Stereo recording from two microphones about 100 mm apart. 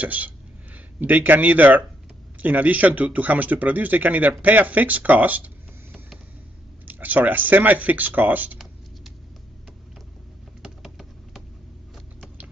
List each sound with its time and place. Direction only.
0.0 s speech: 15° right (ahead or behind)
6.9 s speech: 15° right (ahead or behind)
10.6 s a sound: 5° right (ahead or behind)